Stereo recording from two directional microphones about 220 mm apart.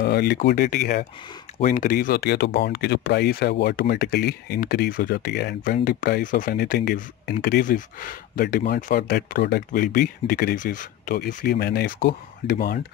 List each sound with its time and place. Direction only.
0.0 s speech: 45° left (ahead or behind)